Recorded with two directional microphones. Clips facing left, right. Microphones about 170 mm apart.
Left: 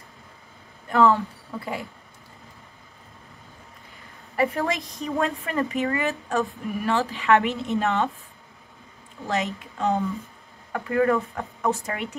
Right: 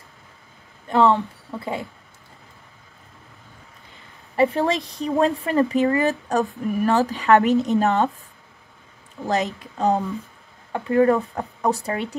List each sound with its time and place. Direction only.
0.8 s speech: 20° right (ahead or behind)
4.4 s speech: 30° right (ahead or behind)
9.3 s speech: 35° right (ahead or behind)